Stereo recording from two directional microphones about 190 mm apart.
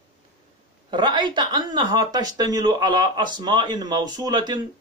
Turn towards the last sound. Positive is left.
turn(degrees=-20)  # may be behind; listen again after turning